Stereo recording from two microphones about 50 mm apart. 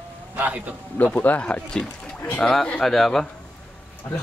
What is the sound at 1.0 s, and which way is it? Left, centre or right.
Speech, left.